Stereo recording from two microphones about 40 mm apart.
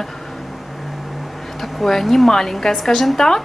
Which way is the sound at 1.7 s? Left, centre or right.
Centre.